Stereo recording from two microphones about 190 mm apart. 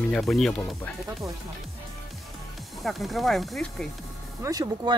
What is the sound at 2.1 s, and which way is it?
Speech, centre (ahead or behind).